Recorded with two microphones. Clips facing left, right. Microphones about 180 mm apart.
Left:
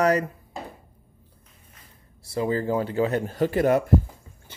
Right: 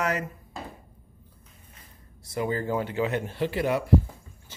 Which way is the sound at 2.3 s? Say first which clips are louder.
Left 3 dB; 30° left (ahead or behind).